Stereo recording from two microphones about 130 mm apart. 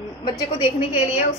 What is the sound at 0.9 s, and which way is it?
Speech, 10° right (ahead or behind).